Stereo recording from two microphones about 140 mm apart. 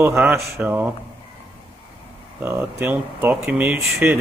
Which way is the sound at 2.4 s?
15° right (ahead or behind).